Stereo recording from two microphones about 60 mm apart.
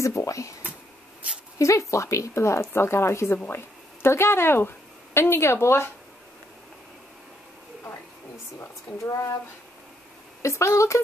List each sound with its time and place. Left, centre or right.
0.0 s speech: left
1.6 s a woman's voice: left
8.5 s speech: left
10.4 s speech: left